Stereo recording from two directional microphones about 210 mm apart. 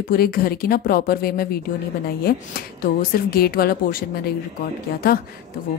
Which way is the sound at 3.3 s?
45° left (ahead or behind).